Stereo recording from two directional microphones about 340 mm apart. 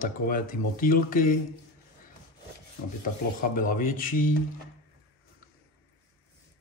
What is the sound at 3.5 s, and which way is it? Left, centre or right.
Speech, left.